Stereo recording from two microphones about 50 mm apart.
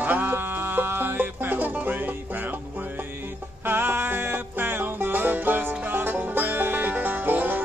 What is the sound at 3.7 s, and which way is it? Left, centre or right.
Music, right.